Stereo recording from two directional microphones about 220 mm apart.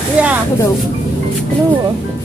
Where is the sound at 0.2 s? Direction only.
5° right (ahead or behind).